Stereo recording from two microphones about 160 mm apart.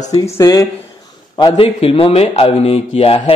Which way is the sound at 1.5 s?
35° left (ahead or behind).